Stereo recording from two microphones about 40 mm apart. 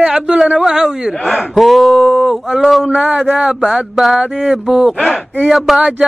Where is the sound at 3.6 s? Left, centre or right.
Centre.